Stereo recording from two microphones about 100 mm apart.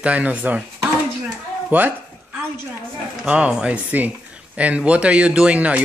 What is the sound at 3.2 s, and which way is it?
Speech, 10° right (ahead or behind).